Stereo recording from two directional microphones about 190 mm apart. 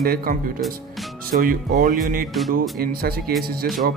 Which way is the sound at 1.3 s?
50° right (ahead or behind).